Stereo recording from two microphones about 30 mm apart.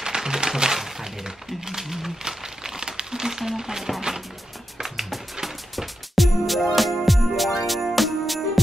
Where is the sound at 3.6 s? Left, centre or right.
Centre.